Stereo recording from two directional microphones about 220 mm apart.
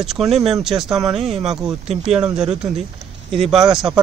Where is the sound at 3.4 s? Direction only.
Centre (ahead or behind).